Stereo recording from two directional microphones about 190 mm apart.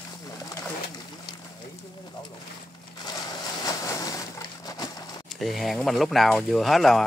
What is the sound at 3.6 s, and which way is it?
Vehicle, 20° left (ahead or behind).